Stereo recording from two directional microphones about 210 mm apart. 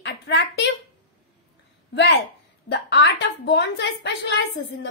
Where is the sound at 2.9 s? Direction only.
55° left (ahead or behind).